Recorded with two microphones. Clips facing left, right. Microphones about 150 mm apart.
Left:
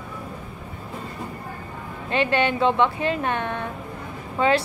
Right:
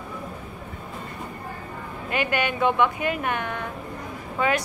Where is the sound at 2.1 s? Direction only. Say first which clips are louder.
Left 4 dB; 30° left (ahead or behind).